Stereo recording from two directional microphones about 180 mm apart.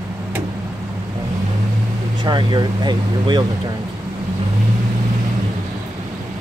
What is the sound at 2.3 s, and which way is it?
Speech, 25° right (ahead or behind).